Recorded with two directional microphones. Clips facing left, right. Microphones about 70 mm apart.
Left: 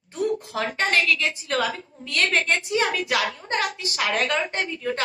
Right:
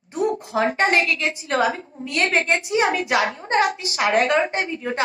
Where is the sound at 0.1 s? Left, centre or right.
Right.